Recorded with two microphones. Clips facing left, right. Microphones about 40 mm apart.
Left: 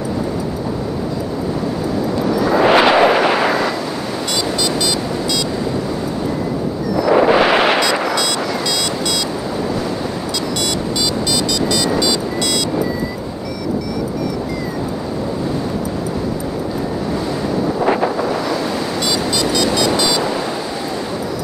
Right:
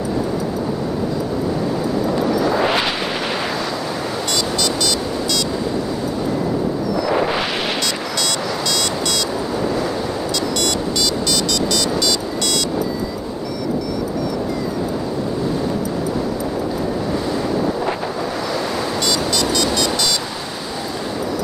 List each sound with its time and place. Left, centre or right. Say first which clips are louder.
2.6 s eruption: left 8 dB; left
4.3 s vehicle: left 2 dB; centre
7.2 s wind noise: left 8 dB; left
8.1 s music: left 3 dB; centre
11.7 s music: left 2 dB; centre
19.0 s music: left 1 dB; centre